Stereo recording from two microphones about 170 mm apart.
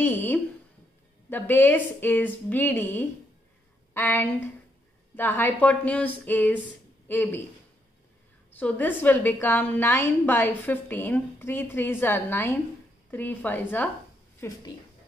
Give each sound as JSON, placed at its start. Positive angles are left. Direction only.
{"t": 0.0, "sound": "a sound", "side_deg": 10}
{"t": 1.3, "sound": "a woman's voice", "side_deg": 10}
{"t": 8.5, "sound": "a woman's voice", "side_deg": 10}
{"t": 14.4, "sound": "a woman's voice", "side_deg": 20}